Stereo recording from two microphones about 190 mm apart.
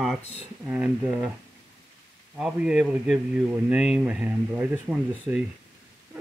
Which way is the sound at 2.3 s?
5° right (ahead or behind).